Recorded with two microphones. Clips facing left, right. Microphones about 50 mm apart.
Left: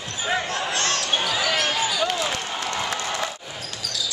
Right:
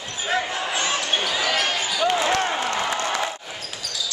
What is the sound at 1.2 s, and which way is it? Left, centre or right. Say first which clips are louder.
Basketball bounce: even; centre.